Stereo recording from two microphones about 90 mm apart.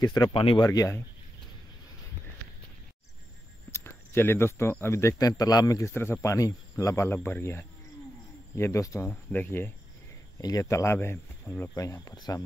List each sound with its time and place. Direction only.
0.0 s speech: 45° left (ahead or behind)
0.3 s speech: 80° left
3.7 s speech: 25° left (ahead or behind)
5.4 s speech: 45° left (ahead or behind)
5.9 s speech: 25° left (ahead or behind)
7.2 s speech: 25° left (ahead or behind)
9.0 s speech: 20° left (ahead or behind)
10.4 s speech: 40° left (ahead or behind); by 11.7 s 25° left (ahead or behind)
11.7 s speech: 40° left (ahead or behind)